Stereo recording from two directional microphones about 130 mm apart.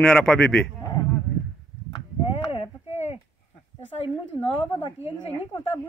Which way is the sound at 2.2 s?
45° left (ahead or behind).